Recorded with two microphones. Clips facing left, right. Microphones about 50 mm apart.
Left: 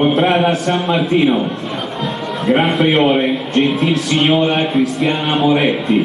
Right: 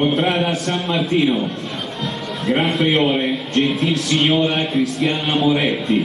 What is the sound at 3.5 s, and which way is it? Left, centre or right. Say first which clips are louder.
Speech: left 3 dB; centre.